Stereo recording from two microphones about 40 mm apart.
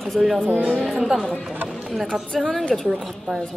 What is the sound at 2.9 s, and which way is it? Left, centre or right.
Speech, centre.